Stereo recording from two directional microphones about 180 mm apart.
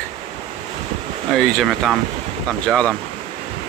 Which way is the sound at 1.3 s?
Centre (ahead or behind).